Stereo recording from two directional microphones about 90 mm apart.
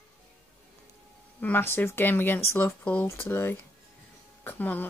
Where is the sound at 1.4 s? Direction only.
25° left (ahead or behind).